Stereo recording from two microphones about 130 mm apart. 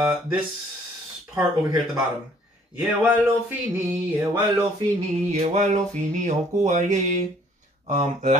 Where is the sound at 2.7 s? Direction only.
10° right (ahead or behind).